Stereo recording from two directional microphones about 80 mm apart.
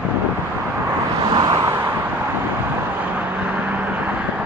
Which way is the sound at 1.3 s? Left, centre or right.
Right.